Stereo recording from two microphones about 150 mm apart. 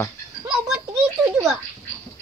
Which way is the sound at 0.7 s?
5° right (ahead or behind).